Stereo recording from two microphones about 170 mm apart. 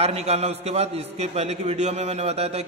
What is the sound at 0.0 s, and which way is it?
A man's voice, 40° right (ahead or behind).